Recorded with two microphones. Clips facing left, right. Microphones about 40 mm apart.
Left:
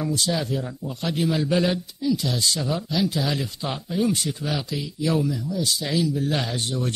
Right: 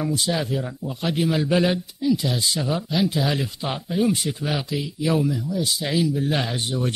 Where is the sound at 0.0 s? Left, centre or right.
Centre.